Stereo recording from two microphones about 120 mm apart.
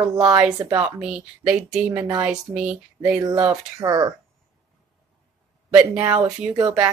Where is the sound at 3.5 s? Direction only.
30° right (ahead or behind).